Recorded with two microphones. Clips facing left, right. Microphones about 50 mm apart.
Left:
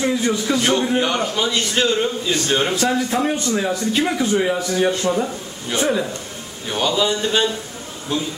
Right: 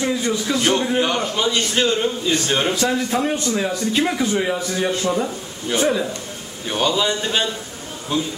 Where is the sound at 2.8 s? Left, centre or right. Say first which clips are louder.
Left 1 dB; centre.